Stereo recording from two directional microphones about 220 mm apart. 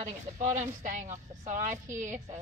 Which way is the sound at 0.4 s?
35° right (ahead or behind).